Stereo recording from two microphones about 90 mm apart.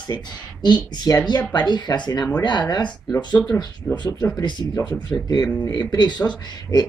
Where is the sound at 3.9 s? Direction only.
10° left (ahead or behind).